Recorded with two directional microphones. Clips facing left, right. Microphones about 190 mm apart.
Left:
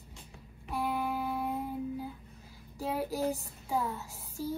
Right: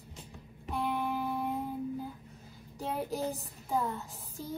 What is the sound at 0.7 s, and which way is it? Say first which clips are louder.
Music: even; centre (ahead or behind).